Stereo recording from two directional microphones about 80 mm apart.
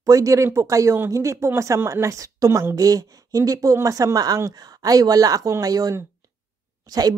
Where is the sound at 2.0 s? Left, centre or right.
Right.